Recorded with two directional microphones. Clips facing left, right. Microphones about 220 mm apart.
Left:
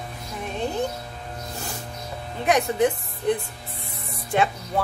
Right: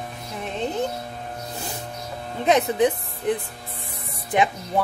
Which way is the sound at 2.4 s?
20° right (ahead or behind).